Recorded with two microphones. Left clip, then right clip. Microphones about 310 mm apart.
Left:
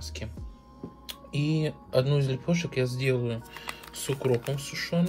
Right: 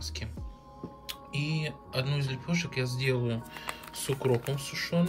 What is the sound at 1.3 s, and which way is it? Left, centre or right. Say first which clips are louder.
Speech: left 5 dB; left.